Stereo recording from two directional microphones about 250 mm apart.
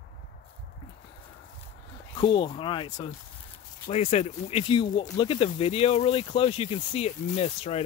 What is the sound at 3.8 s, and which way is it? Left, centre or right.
Speech, left.